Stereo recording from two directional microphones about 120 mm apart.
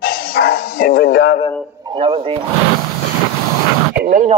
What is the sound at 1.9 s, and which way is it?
Speech, 45° right (ahead or behind).